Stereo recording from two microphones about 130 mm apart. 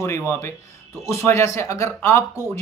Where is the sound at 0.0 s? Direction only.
20° left (ahead or behind).